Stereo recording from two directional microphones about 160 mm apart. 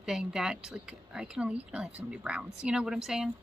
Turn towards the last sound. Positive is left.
turn(degrees=-5)  # may be behind; listen again after turning